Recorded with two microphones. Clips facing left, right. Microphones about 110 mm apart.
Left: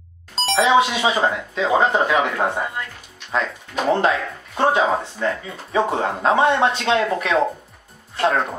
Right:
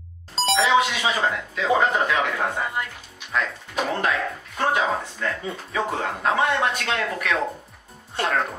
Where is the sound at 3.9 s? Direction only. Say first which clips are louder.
Left 7 dB; 25° left (ahead or behind).